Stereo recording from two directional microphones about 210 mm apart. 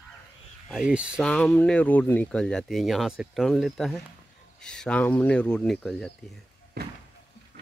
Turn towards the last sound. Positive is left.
turn(degrees=-50)  # may be behind; listen again after turning